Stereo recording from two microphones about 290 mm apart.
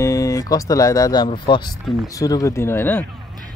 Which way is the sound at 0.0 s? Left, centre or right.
Centre.